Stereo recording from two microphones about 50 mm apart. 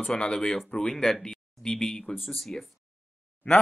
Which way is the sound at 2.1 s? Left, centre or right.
Centre.